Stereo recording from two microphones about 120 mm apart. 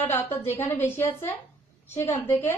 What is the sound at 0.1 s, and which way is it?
A woman's voice, 15° left (ahead or behind).